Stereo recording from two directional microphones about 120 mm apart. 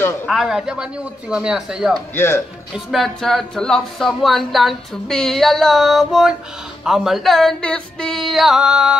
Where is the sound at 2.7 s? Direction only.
Centre (ahead or behind).